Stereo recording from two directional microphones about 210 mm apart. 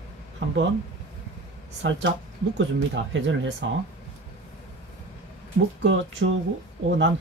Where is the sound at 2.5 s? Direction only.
60° right (ahead or behind).